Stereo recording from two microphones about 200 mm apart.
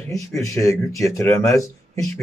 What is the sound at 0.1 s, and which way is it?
Speech, 15° left (ahead or behind).